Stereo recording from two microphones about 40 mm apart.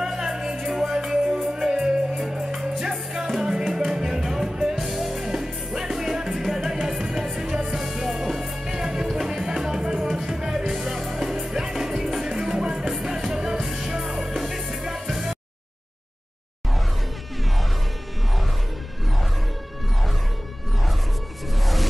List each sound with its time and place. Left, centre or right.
0.0 s music: centre